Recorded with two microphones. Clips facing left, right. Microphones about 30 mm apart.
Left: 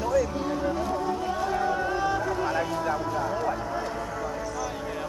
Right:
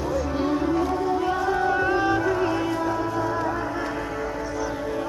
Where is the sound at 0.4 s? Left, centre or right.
Right.